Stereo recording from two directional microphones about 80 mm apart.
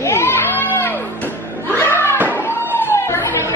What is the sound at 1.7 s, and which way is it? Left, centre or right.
Music, left.